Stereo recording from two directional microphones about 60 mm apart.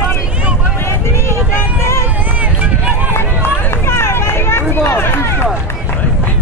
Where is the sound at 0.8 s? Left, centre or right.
Left.